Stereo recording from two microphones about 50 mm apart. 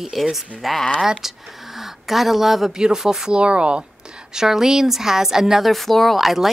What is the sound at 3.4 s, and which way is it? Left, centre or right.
Speech, right.